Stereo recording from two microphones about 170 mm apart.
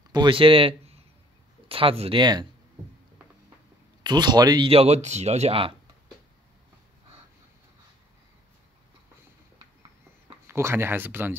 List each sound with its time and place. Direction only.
0.1 s a man's voice: 30° right (ahead or behind)
4.0 s speech: 25° right (ahead or behind)
10.4 s speech: 15° right (ahead or behind)